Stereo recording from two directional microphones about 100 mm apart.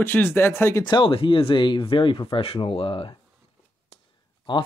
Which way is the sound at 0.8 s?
55° left (ahead or behind).